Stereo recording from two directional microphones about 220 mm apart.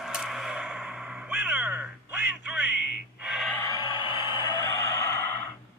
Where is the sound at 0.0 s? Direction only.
Centre (ahead or behind).